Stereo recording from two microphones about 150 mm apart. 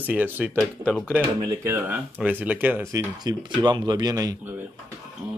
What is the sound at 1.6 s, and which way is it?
Speech, 15° right (ahead or behind).